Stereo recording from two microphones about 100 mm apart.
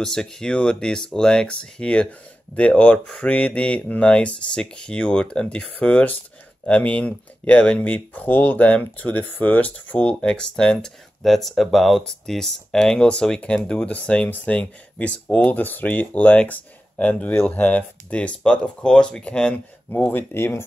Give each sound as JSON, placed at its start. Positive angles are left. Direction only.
{"t": 0.0, "sound": "speech", "side_deg": 5}